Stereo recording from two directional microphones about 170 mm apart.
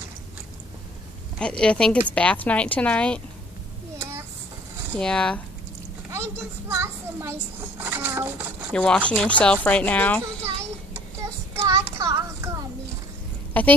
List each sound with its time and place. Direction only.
1.4 s speech: 5° left (ahead or behind)
4.9 s speech: 5° left (ahead or behind)
6.0 s a child's voice: 15° right (ahead or behind)
8.7 s speech: 5° left (ahead or behind)
11.2 s child singing: 20° right (ahead or behind)
13.5 s a sound: 10° left (ahead or behind)